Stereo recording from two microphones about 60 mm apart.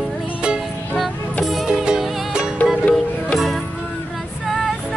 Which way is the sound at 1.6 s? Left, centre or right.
Centre.